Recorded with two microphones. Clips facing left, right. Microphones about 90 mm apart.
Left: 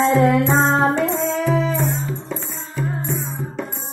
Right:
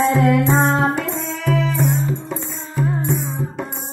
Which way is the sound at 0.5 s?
20° left (ahead or behind).